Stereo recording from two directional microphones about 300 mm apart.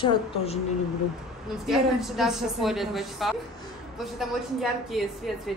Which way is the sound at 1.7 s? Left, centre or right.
Centre.